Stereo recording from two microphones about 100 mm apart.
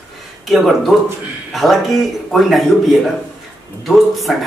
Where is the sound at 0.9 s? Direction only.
5° right (ahead or behind).